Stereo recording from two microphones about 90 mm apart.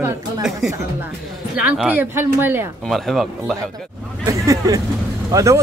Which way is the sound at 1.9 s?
25° right (ahead or behind).